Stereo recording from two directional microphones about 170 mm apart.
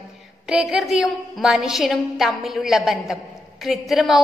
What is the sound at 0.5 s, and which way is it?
A woman's voice, 5° right (ahead or behind).